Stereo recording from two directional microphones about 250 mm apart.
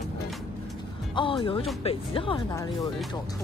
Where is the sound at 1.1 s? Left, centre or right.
Centre.